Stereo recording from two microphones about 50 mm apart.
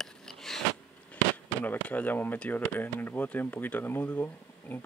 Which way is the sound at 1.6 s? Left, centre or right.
Left.